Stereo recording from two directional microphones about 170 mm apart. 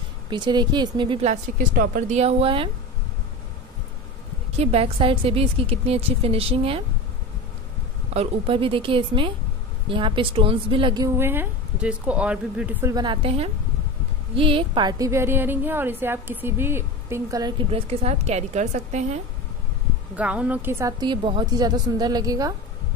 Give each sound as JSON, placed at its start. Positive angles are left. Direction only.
{"t": 0.3, "sound": "a woman's voice", "side_deg": -25}
{"t": 1.2, "sound": "speech", "side_deg": -50}
{"t": 4.6, "sound": "a woman's voice", "side_deg": -35}
{"t": 8.1, "sound": "a woman's voice", "side_deg": -35}
{"t": 11.1, "sound": "a woman's voice", "side_deg": -15}
{"t": 12.9, "sound": "a woman's voice", "side_deg": -30}
{"t": 17.6, "sound": "a woman's voice", "side_deg": -35}
{"t": 20.2, "sound": "a woman's voice", "side_deg": -10}